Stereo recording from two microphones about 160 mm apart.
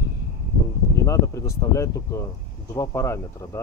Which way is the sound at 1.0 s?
20° left (ahead or behind).